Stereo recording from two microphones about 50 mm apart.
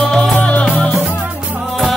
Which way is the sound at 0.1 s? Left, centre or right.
Centre.